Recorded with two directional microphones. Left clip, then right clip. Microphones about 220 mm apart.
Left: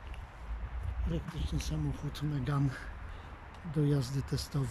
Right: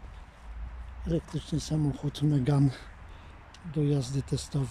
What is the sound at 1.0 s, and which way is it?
Speech, 25° right (ahead or behind).